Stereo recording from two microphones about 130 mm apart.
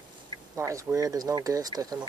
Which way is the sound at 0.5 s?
25° right (ahead or behind).